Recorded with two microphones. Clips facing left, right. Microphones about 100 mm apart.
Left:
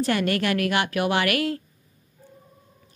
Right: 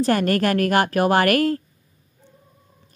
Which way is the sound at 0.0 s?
40° right (ahead or behind).